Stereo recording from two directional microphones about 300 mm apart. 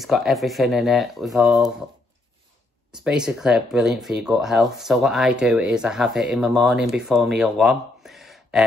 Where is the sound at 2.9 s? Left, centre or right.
Centre.